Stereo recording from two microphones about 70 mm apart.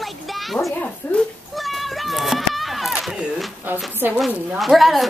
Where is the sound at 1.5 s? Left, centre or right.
Centre.